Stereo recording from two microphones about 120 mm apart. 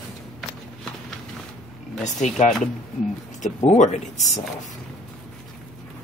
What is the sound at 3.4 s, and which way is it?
Speech, 75° left (ahead or behind).